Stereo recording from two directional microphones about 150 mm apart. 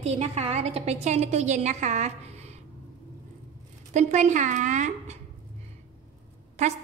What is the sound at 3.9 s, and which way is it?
A woman's voice, 55° right (ahead or behind).